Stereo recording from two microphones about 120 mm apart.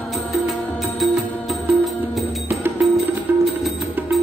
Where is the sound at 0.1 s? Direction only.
Centre (ahead or behind).